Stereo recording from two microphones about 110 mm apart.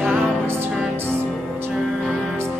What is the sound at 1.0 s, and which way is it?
Music, 20° right (ahead or behind).